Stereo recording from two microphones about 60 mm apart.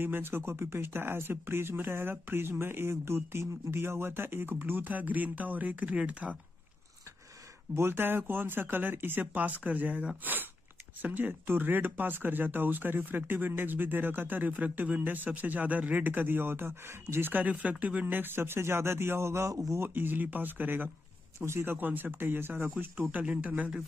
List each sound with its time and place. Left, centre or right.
0.0 s speech: right
7.7 s speech: right
17.3 s speech: right
18.0 s speech: right
19.5 s speech: right
19.8 s speech: right
22.9 s speech: right